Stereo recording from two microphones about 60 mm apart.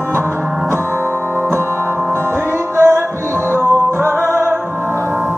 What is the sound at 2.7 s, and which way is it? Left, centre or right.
Music, right.